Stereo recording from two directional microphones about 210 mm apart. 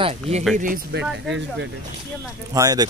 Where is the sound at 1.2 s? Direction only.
60° right (ahead or behind).